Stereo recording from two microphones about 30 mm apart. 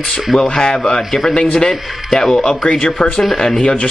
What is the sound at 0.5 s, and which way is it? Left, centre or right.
Speech, left.